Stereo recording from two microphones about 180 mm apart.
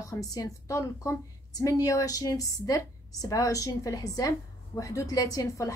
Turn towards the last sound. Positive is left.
turn(degrees=15)  # may be behind; listen again after turning